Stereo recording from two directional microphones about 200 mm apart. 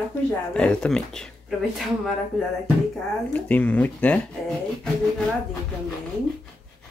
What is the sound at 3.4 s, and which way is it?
Speech, 5° left (ahead or behind).